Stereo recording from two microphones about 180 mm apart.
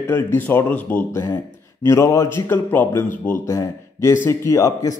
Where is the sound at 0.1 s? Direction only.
10° left (ahead or behind).